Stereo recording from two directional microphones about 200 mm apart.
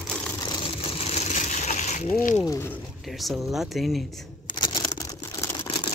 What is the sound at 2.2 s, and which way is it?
Speech, 40° left (ahead or behind).